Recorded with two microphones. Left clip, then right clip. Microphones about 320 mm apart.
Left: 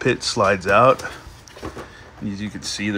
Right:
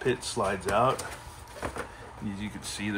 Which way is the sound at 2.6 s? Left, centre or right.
Centre.